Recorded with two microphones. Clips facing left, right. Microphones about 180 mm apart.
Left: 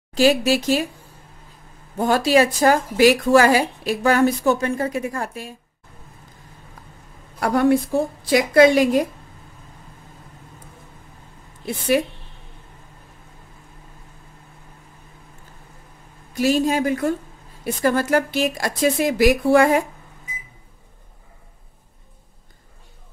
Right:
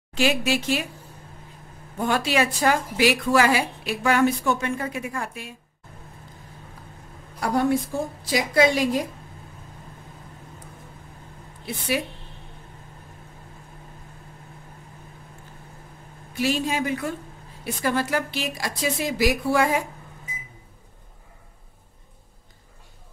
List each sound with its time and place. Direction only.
0.1 s a woman's voice: 35° left (ahead or behind)
2.0 s a woman's voice: 40° left (ahead or behind)
7.3 s a woman's voice: 65° left (ahead or behind)
16.3 s a woman's voice: 45° left (ahead or behind)